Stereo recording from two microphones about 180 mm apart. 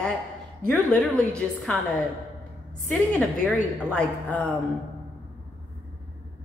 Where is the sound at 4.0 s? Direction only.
10° left (ahead or behind).